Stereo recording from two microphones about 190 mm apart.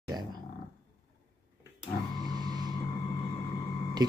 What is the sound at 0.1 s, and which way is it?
Roar, 20° right (ahead or behind).